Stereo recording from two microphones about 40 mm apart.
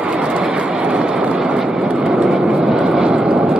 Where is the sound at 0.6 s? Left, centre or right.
Centre.